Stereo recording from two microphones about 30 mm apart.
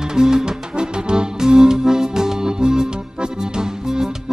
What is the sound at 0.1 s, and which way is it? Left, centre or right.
Music, right.